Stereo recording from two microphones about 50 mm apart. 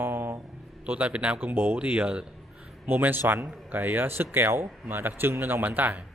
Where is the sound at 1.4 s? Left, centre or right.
Right.